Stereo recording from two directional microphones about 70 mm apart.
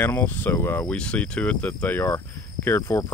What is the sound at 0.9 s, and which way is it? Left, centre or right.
Speech, centre.